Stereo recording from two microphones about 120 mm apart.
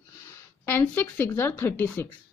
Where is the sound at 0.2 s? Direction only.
20° left (ahead or behind).